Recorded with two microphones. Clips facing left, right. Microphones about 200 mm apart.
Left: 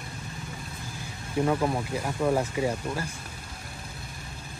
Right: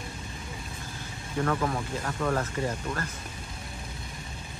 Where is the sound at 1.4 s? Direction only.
20° left (ahead or behind).